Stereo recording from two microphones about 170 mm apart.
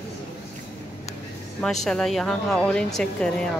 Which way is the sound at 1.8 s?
Centre (ahead or behind).